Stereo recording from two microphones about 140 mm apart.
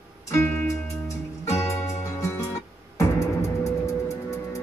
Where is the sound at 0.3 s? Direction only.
15° left (ahead or behind).